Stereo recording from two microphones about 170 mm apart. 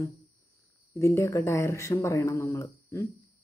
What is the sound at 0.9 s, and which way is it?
Speech, 15° left (ahead or behind).